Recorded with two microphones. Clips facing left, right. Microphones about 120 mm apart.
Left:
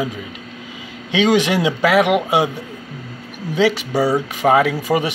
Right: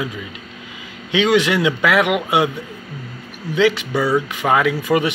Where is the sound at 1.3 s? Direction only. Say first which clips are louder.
Even; 40° left (ahead or behind).